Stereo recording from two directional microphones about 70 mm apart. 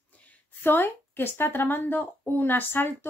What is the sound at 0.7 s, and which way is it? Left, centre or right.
Speech, left.